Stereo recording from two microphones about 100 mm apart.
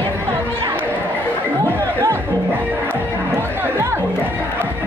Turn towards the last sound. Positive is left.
turn(degrees=-25)  # may be behind; listen again after turning